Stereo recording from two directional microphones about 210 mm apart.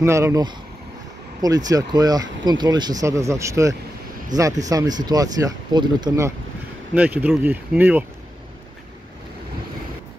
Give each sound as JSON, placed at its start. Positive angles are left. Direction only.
{"t": 0.0, "sound": "speech", "side_deg": -15}